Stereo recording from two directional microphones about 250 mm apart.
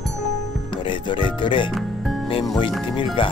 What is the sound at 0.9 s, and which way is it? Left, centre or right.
Speech, centre.